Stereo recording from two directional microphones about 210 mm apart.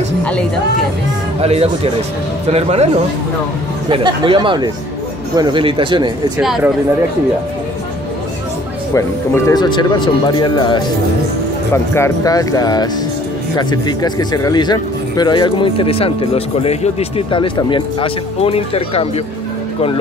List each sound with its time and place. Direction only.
0.2 s a woman's voice: 5° left (ahead or behind)
1.4 s a man's voice: 30° right (ahead or behind)
3.9 s a man's voice: 25° right (ahead or behind)
6.4 s speech: centre (ahead or behind)
8.9 s speech: 15° left (ahead or behind)